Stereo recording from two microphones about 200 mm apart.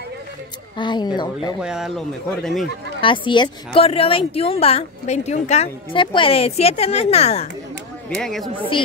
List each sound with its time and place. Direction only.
0.7 s a woman's voice: 20° left (ahead or behind)
1.6 s speech: 5° right (ahead or behind)
3.0 s a woman's voice: 25° left (ahead or behind)
8.2 s speech: centre (ahead or behind)